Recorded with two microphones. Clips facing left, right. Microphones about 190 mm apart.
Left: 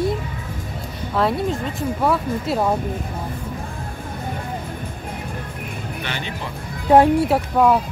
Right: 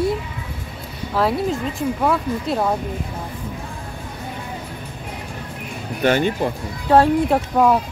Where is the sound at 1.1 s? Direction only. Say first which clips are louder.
Right 1 dB; centre (ahead or behind).